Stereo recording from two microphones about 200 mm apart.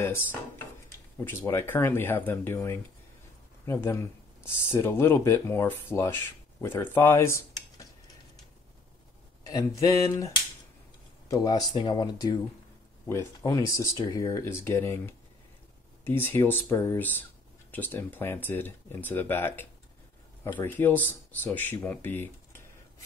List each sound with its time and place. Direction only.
0.0 s speech: 10° left (ahead or behind)
9.4 s speech: 15° left (ahead or behind)